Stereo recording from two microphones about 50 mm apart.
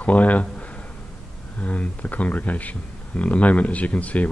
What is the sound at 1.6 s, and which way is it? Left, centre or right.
Speech, left.